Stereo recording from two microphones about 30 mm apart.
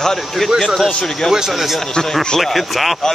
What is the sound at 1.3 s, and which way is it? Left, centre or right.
Speech, centre.